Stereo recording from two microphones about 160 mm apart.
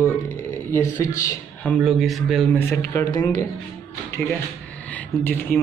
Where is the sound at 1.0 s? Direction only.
20° left (ahead or behind).